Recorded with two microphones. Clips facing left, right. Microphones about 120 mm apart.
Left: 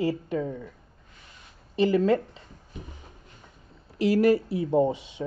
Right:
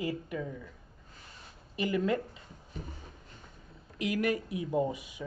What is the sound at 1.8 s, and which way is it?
Speech, 30° left (ahead or behind).